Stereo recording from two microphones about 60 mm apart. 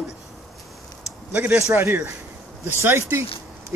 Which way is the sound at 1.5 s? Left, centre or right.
Right.